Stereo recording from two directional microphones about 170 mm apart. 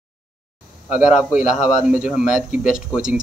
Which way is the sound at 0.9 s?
5° right (ahead or behind).